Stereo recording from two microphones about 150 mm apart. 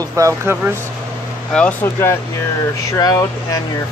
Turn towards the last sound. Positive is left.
turn(degrees=25)  # may be behind; listen again after turning